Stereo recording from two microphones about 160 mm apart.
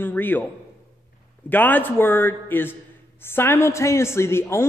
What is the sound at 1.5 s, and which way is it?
A woman's voice, 10° left (ahead or behind).